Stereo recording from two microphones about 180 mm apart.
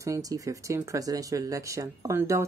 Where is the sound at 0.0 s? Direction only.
20° right (ahead or behind).